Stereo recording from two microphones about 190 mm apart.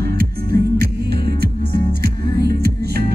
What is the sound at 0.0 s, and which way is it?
Music, 55° right (ahead or behind).